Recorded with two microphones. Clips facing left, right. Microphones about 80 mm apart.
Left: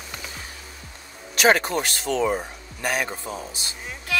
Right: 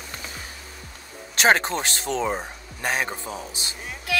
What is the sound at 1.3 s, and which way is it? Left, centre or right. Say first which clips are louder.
Speech: left 1 dB; right.